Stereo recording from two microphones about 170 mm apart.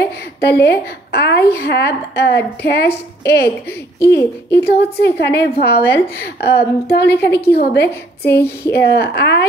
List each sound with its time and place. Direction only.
0.4 s a woman's voice: 75° left (ahead or behind)